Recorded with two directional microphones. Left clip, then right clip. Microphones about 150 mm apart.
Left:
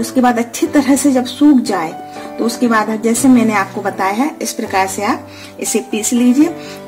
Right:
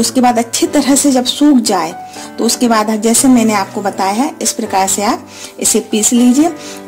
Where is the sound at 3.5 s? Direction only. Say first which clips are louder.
Right 1 dB; 30° right (ahead or behind).